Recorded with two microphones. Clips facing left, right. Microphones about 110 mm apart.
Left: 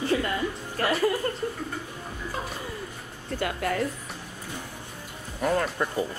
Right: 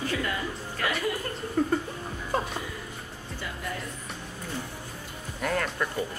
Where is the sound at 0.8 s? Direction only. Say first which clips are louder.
Left 5 dB; 35° left (ahead or behind).